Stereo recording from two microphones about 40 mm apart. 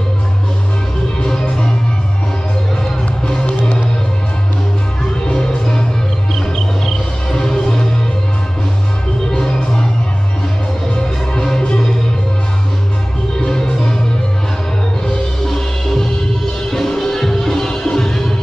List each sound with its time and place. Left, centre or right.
1.2 s music: centre
5.2 s music: centre
7.2 s music: centre
9.3 s music: centre
11.3 s music: centre
13.4 s music: centre
15.4 s music: centre